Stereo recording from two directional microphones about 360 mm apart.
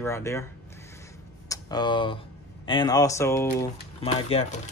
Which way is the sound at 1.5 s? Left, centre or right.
Centre.